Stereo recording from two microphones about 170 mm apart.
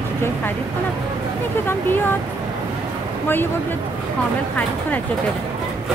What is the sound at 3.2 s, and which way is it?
Speech, 10° left (ahead or behind).